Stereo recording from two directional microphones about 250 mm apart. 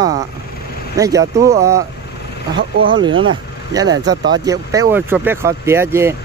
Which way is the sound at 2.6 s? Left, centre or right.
Right.